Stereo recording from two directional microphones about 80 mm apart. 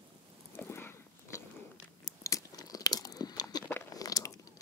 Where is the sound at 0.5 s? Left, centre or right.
Left.